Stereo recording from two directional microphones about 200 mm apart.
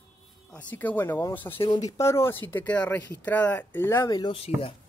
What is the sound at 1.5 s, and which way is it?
Speech, 25° left (ahead or behind).